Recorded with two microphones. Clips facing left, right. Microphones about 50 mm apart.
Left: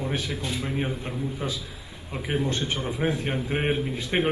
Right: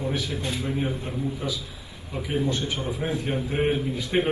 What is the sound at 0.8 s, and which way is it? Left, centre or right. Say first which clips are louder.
Speech: right 1 dB; left.